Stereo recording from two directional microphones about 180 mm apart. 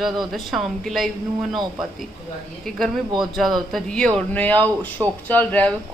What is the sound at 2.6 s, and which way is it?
A woman's voice, centre (ahead or behind).